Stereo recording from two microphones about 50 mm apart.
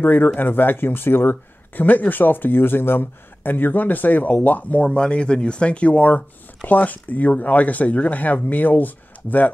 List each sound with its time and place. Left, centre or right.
0.0 s speech: left
4.8 s speech: centre; by 9.5 s left